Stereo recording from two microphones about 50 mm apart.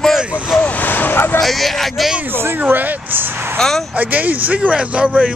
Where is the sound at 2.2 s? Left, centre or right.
Right.